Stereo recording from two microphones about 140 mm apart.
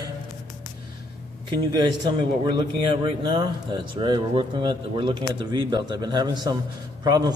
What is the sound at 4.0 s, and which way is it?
A man's voice, 35° right (ahead or behind).